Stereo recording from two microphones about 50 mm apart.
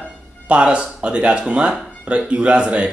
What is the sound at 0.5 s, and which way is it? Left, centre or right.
Speech, right.